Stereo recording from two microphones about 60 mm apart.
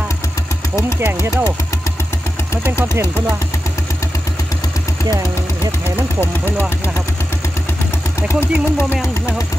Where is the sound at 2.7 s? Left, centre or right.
Left.